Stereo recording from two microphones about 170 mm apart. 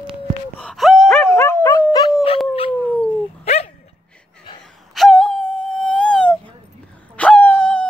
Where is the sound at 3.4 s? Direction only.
40° left (ahead or behind).